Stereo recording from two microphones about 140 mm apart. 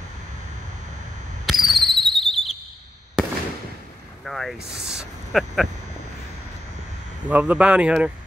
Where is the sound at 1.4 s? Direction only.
Centre (ahead or behind).